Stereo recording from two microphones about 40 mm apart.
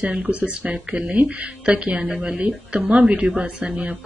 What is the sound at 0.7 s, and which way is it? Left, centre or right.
Speech, right.